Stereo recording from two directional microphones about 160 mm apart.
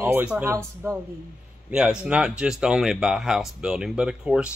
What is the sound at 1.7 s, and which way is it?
Speech, 5° right (ahead or behind).